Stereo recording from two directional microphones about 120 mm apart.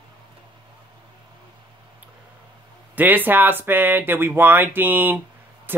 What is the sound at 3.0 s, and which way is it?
Speech, 15° right (ahead or behind).